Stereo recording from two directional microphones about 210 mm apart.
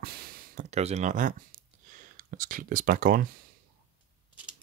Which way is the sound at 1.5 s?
40° right (ahead or behind).